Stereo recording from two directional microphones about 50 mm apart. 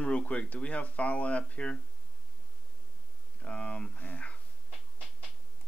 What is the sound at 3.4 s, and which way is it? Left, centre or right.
Speech, left.